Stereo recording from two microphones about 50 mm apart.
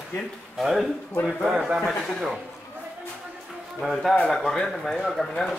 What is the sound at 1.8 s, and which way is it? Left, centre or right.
Speech, centre.